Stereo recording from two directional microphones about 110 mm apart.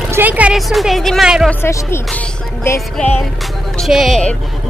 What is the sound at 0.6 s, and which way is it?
Speech, centre (ahead or behind).